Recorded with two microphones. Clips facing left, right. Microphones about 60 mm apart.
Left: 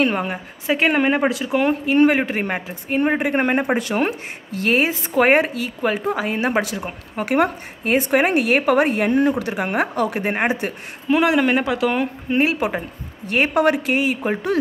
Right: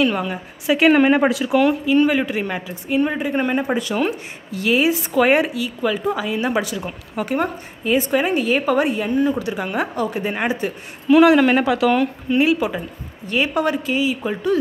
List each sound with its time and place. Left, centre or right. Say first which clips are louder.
0.0 s a woman's voice: even; left
0.8 s speech: right 4 dB; centre
1.3 s speech: right 3 dB; left
1.7 s a woman's voice: left 1 dB; left
7.2 s a woman's voice: left 5 dB; left
11.1 s speech: right 6 dB; left
11.3 s speech: right 3 dB; centre
12.4 s a woman's voice: right 2 dB; left
13.6 s speech: left 4 dB; left